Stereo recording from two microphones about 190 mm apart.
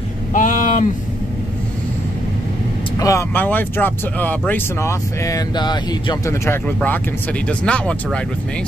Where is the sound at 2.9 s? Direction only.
15° left (ahead or behind).